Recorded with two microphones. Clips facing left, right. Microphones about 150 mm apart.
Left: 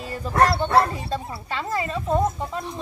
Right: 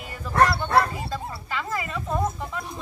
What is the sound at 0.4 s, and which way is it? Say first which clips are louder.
Speech: left 2 dB; 25° left (ahead or behind).